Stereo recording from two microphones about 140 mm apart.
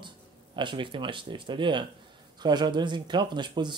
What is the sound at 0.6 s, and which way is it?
Speech, 35° right (ahead or behind).